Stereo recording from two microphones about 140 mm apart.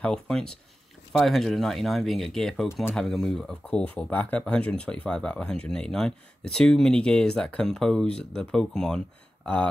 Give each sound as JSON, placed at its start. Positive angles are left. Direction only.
{"t": 0.0, "sound": "speech", "side_deg": 5}
{"t": 2.7, "sound": "speech", "side_deg": 15}
{"t": 3.0, "sound": "speech", "side_deg": 5}